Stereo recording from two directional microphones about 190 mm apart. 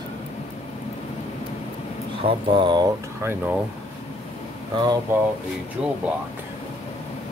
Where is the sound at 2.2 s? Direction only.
25° right (ahead or behind).